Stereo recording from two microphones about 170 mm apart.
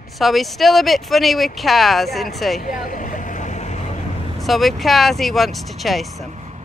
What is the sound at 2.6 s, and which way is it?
Vehicle, 55° left (ahead or behind).